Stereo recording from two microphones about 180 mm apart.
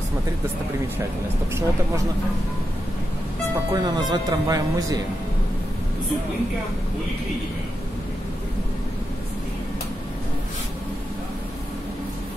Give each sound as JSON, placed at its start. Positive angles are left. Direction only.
{"t": 3.7, "sound": "speech", "side_deg": -25}